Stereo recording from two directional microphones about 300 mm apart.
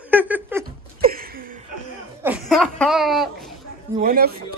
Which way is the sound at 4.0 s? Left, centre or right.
Right.